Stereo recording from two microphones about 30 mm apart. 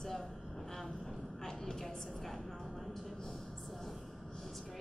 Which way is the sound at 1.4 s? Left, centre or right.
Centre.